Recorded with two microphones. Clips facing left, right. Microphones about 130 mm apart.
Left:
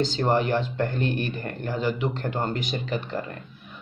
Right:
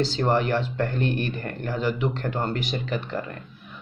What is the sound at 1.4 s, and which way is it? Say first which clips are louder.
A man's voice: even; 20° left (ahead or behind).